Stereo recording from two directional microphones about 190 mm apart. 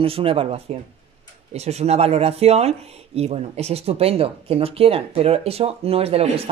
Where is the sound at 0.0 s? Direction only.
30° right (ahead or behind).